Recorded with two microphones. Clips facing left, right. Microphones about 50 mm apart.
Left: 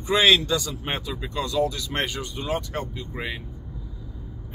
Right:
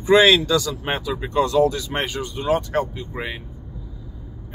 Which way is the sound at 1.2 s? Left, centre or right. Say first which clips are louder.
Right 8 dB; right.